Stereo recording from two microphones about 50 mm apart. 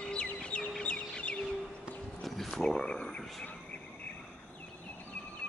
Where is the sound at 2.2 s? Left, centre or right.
Centre.